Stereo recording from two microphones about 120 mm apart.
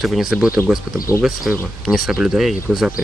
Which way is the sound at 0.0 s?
Centre (ahead or behind).